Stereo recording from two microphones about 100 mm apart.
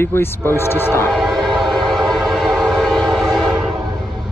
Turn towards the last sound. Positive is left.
turn(degrees=0)  # may be behind; listen again after turning